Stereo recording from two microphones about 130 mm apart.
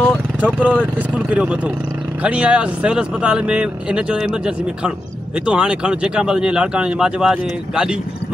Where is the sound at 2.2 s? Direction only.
10° right (ahead or behind).